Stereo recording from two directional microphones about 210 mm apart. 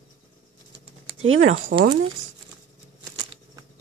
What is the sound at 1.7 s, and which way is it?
Speech, 50° right (ahead or behind).